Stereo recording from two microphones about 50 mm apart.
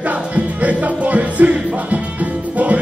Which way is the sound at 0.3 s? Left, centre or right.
Right.